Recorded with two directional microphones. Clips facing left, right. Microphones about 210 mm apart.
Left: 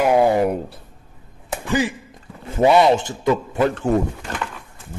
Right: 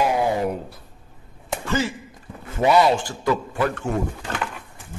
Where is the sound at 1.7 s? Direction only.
15° left (ahead or behind).